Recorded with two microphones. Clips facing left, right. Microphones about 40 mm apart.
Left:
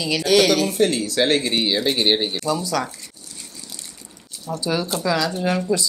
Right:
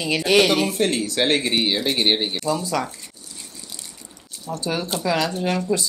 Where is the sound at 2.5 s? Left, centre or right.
Right.